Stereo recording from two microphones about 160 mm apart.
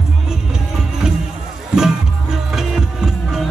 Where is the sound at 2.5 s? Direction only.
Centre (ahead or behind).